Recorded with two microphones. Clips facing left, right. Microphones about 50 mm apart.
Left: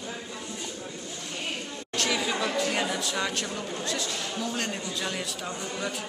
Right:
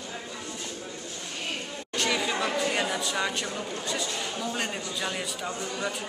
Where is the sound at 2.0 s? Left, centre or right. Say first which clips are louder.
Even; centre.